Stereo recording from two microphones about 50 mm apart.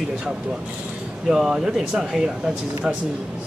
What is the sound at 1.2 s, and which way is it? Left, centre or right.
Speech, centre.